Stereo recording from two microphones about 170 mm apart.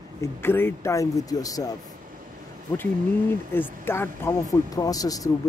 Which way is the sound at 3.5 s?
15° left (ahead or behind).